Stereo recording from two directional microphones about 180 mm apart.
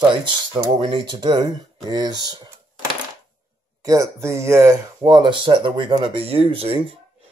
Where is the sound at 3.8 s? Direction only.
15° right (ahead or behind).